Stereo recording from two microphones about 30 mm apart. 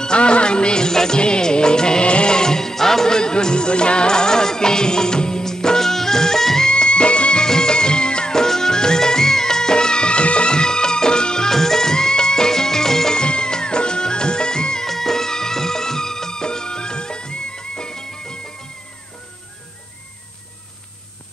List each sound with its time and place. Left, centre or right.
0.0 s music of bollywood: left
2.0 s music: left
2.3 s music: left
6.7 s music: left
7.4 s music: left
8.3 s music: centre
11.5 s music: centre
13.1 s music: left
14.9 s music: centre